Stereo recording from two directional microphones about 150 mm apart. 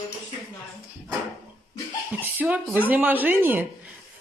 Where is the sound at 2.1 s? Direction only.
10° right (ahead or behind).